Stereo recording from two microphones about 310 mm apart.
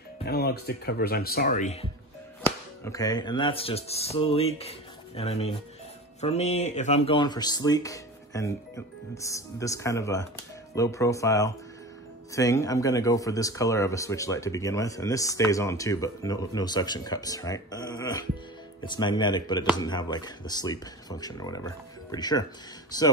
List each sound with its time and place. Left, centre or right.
0.2 s speech: left
2.4 s speech: centre